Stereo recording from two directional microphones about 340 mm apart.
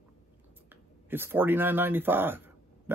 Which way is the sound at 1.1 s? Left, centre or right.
Centre.